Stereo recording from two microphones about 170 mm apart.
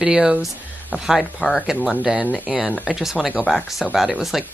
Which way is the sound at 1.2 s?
10° left (ahead or behind).